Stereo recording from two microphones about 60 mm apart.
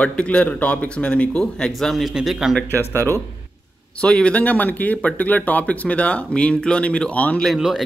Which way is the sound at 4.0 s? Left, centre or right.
Centre.